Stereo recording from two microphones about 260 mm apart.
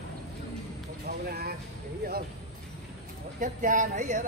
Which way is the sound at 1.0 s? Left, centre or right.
Right.